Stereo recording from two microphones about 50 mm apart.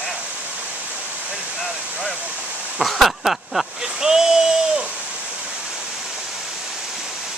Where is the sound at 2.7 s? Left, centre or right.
Centre.